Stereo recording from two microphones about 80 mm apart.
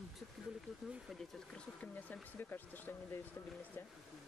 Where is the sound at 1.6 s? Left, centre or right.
Centre.